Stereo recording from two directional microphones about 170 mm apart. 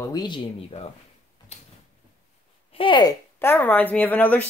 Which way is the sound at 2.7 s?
30° left (ahead or behind).